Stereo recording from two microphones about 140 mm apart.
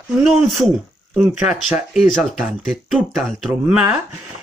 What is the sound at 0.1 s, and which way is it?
Speech, centre (ahead or behind).